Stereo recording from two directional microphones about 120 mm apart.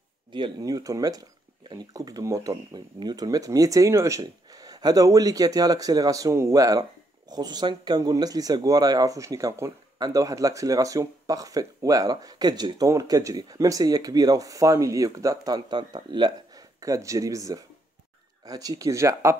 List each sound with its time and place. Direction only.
0.3 s speech: 35° right (ahead or behind)